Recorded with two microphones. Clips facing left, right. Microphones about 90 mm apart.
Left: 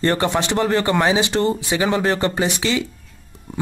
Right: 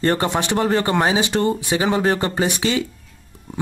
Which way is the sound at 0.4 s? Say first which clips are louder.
Even; 25° right (ahead or behind).